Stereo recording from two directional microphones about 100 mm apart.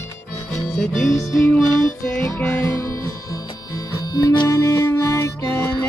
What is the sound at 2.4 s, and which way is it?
Music, 25° left (ahead or behind).